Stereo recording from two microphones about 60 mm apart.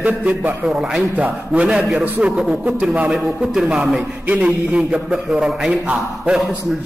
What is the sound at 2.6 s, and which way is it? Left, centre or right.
A man's voice, right.